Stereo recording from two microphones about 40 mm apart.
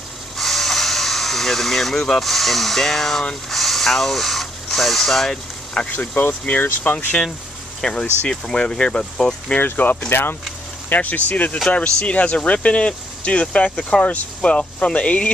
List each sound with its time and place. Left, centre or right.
0.4 s speech: centre
5.9 s speech: left
7.8 s speech: left
9.8 s speech: left
10.0 s speech: left
10.9 s speech: left